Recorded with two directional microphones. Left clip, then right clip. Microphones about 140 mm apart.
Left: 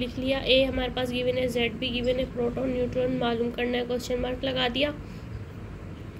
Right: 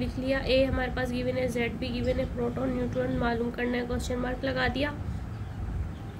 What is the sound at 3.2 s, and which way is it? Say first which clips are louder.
A woman's voice: left 2 dB; 15° left (ahead or behind).